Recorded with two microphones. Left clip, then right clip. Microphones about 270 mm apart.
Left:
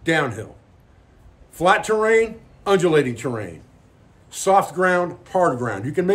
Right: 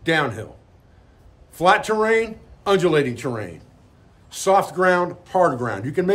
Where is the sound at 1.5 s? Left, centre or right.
Centre.